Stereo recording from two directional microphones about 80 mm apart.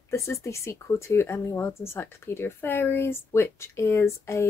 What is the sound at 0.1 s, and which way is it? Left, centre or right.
Speech, left.